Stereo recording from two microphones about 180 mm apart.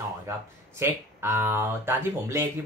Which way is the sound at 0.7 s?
15° right (ahead or behind).